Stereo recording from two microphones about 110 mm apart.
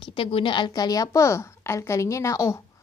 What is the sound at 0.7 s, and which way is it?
A woman's voice, 35° left (ahead or behind).